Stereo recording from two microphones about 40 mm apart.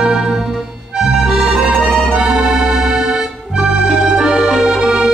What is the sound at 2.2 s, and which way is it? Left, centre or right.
Accordion, centre.